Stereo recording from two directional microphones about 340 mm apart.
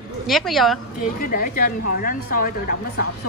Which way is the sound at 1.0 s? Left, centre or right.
Left.